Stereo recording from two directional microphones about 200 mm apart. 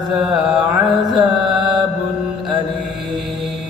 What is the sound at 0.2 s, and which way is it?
Mantra, centre (ahead or behind).